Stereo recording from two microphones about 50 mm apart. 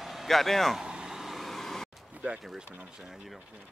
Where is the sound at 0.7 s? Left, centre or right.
Centre.